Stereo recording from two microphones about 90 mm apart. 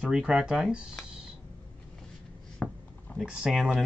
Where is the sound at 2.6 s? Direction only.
10° left (ahead or behind).